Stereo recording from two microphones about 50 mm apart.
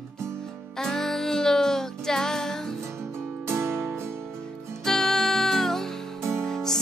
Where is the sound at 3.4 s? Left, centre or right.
Right.